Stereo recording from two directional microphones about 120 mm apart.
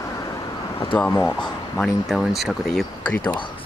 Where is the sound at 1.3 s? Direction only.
5° left (ahead or behind).